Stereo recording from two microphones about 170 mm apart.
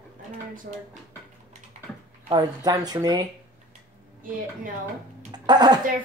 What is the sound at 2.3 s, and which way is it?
Speech, 25° right (ahead or behind).